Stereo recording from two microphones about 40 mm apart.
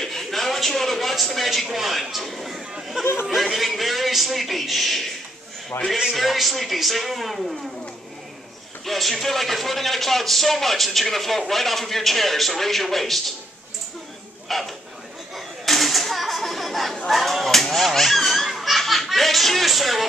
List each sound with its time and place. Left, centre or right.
0.0 s a man's voice: centre
5.7 s a man's voice: left
6.1 s a man's voice: centre
8.8 s a man's voice: centre
14.5 s a man's voice: centre
15.3 s a sound: centre
17.1 s speech: centre